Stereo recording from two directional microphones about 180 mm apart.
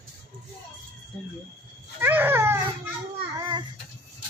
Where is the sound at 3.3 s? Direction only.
25° right (ahead or behind).